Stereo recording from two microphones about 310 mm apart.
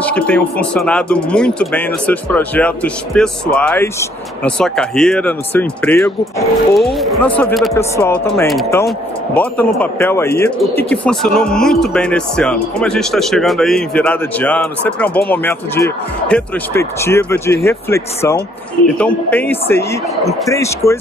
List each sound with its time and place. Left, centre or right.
0.0 s speech: centre